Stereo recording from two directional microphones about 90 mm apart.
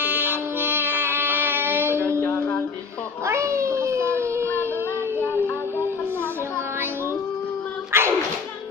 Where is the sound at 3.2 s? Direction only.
35° right (ahead or behind).